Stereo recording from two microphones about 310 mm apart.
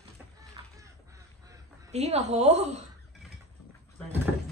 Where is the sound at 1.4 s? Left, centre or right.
Right.